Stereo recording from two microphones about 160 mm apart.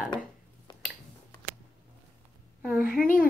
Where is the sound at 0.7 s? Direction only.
30° left (ahead or behind).